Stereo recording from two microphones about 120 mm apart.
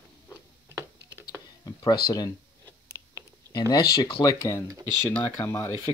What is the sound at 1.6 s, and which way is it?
Speech, 35° left (ahead or behind).